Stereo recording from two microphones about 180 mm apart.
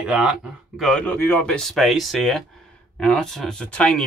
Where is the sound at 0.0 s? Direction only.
5° right (ahead or behind).